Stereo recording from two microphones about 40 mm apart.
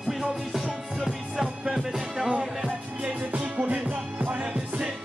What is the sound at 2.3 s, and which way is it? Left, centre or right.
Music, right.